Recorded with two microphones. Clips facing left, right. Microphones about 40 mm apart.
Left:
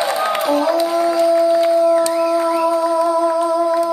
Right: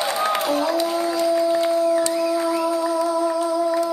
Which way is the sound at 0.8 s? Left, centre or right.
Centre.